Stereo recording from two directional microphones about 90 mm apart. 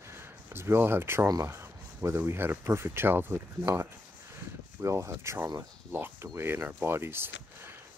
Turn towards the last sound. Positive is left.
turn(degrees=-25)  # may be behind; listen again after turning